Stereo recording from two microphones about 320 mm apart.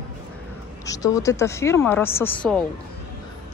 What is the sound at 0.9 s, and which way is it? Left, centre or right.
Speech, centre.